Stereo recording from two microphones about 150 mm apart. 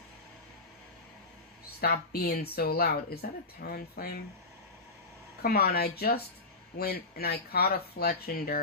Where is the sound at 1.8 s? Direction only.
90° left.